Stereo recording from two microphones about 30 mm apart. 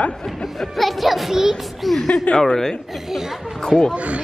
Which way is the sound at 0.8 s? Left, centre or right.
Centre.